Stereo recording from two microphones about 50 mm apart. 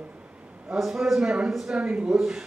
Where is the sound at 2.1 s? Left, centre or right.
Centre.